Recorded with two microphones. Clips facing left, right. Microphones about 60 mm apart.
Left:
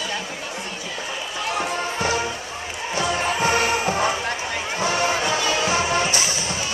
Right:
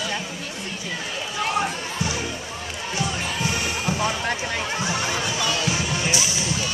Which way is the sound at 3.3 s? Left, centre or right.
Left.